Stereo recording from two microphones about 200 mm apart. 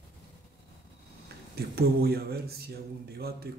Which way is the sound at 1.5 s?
50° right (ahead or behind).